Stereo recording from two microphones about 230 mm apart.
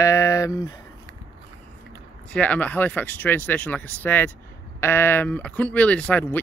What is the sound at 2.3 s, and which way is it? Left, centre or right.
Speech, centre.